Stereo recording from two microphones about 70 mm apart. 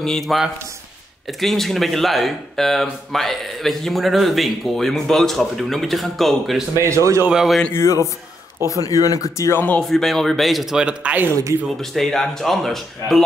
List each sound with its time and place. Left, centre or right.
0.0 s speech: centre
6.8 s a man's voice: right
7.2 s speech: centre
7.7 s speech: left
8.6 s speech: left
9.5 s speech: left
9.8 s speech: centre
11.8 s speech: centre